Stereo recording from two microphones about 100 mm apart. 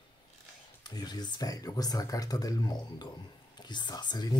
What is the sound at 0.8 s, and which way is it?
Speech, 45° left (ahead or behind).